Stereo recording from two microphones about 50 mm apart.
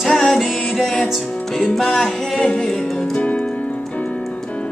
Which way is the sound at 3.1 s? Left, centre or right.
Left.